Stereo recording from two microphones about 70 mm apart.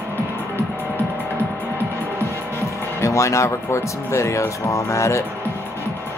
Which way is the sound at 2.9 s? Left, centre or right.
Left.